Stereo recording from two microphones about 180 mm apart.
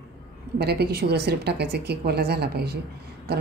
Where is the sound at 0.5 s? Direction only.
65° right (ahead or behind).